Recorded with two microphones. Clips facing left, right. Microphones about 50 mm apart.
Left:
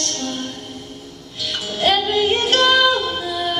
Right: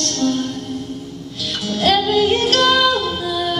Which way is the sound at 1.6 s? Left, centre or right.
Centre.